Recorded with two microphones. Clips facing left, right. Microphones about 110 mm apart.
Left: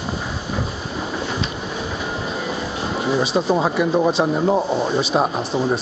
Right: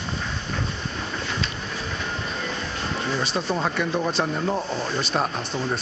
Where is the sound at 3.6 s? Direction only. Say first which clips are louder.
Left 6 dB; 5° left (ahead or behind).